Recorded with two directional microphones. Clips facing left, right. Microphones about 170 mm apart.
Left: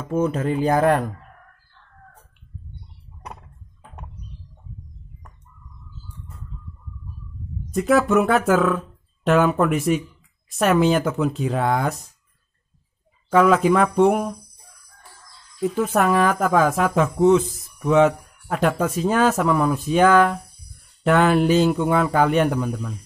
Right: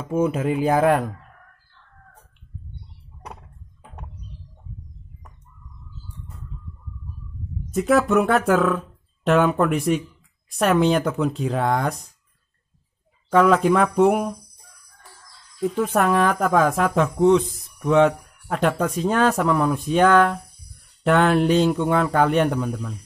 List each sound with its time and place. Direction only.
0.0 s speech: 10° right (ahead or behind)
7.7 s a woman's voice: centre (ahead or behind)
13.3 s a woman's voice: centre (ahead or behind)
15.6 s a woman's voice: 5° left (ahead or behind)